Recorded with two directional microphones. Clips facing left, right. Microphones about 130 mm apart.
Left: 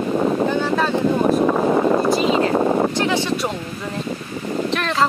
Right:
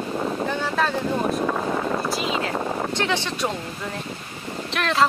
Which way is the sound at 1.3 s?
45° left (ahead or behind).